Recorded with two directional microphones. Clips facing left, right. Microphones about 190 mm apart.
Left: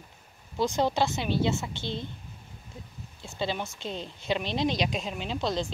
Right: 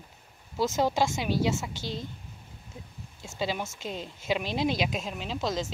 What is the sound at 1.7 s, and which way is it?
Speech, 40° right (ahead or behind).